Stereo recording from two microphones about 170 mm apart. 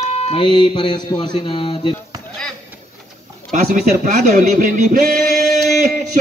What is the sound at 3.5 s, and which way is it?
A man's voice, 50° right (ahead or behind).